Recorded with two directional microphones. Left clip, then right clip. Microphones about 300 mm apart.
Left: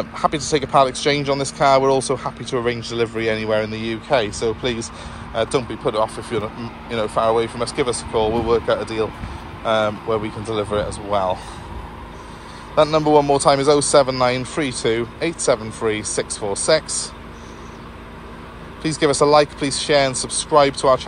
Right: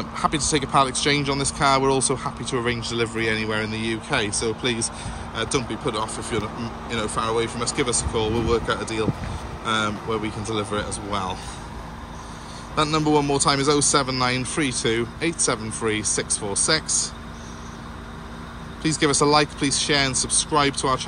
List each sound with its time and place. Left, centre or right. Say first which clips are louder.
0.2 s speech: left 3 dB; centre
12.7 s speech: left 6 dB; centre
16.8 s speech: right 2 dB; centre
18.8 s speech: left 4 dB; centre